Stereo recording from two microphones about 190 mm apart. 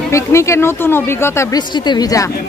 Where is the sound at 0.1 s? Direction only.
15° left (ahead or behind).